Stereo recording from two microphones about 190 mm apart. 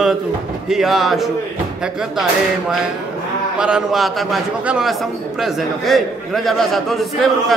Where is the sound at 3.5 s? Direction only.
5° right (ahead or behind).